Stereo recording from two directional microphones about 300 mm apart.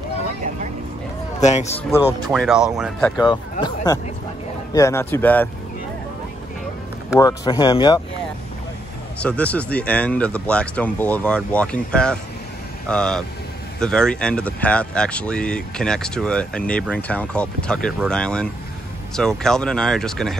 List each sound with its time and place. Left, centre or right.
1.4 s speech: left
2.0 s speech: centre
2.3 s speech: centre
3.2 s speech: centre
7.2 s speech: centre
9.2 s speech: centre